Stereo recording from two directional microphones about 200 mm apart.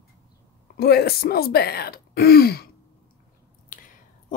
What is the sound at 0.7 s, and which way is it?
Speech, 55° left (ahead or behind).